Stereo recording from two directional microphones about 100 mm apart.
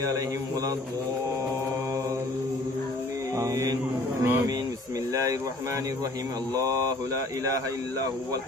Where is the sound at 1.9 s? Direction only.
30° right (ahead or behind).